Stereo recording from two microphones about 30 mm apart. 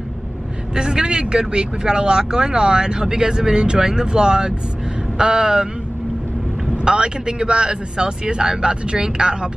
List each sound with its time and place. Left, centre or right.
0.7 s speech: right
6.8 s speech: right